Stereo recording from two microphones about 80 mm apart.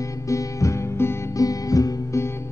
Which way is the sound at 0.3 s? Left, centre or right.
Left.